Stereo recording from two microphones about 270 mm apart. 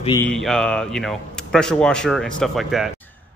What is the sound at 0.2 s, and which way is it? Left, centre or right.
A man's voice, centre.